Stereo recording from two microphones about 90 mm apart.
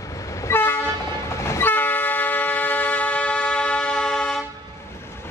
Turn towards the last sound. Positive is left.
turn(degrees=10)  # may be behind; listen again after turning